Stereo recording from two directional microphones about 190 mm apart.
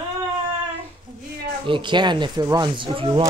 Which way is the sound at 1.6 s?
25° right (ahead or behind).